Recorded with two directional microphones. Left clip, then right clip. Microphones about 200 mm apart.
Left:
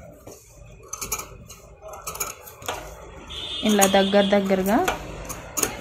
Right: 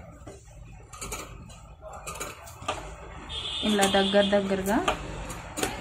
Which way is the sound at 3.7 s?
40° left (ahead or behind).